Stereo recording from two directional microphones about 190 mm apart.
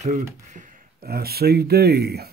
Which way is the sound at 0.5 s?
40° right (ahead or behind).